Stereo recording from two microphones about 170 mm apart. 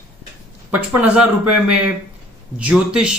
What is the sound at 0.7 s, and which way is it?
Speech, 10° right (ahead or behind).